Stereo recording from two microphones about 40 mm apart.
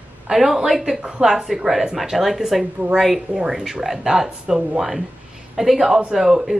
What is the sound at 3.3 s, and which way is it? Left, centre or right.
A woman's voice, centre.